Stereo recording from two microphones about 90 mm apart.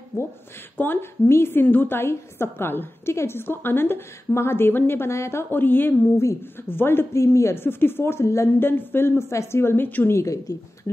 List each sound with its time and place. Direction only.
0.1 s a woman's voice: 30° left (ahead or behind)
10.1 s a woman's voice: 35° left (ahead or behind)